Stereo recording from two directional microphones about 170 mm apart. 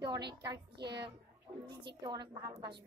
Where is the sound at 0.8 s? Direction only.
75° right (ahead or behind).